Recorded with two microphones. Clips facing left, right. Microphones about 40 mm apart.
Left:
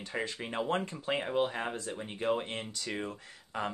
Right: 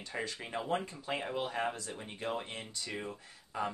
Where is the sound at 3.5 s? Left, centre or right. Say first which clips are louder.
Left 1 dB; left.